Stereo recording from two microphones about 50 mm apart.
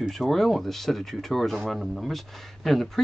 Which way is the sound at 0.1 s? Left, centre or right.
Centre.